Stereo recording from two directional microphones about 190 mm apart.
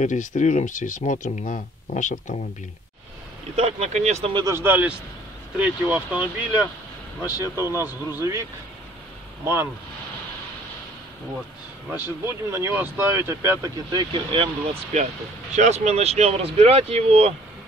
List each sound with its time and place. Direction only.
0.0 s speech: 40° left (ahead or behind)
3.5 s speech: 35° right (ahead or behind); by 6.7 s 10° right (ahead or behind)
7.2 s speech: 20° left (ahead or behind)
7.6 s speech: 15° right (ahead or behind)
9.4 s speech: 10° right (ahead or behind)
11.9 s speech: 15° right (ahead or behind); by 17.3 s 30° right (ahead or behind)